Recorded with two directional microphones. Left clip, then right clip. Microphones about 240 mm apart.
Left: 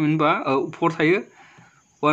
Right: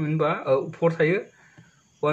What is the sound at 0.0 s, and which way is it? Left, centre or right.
Speech, left.